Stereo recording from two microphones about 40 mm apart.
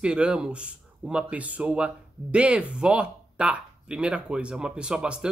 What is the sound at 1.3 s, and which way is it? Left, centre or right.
Speech, right.